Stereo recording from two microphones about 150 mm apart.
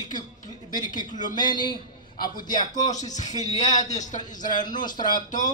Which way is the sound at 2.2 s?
70° left (ahead or behind).